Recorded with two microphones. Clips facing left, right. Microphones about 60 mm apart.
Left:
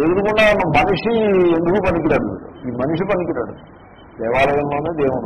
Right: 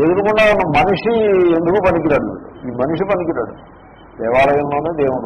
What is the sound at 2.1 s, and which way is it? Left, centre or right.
A man's voice, centre.